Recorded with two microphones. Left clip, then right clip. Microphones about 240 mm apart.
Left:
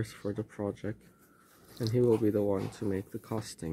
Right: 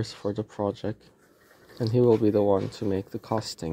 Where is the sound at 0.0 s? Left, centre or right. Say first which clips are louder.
Right 6 dB; centre.